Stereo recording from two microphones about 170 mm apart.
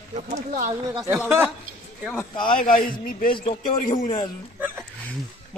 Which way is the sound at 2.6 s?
55° left (ahead or behind).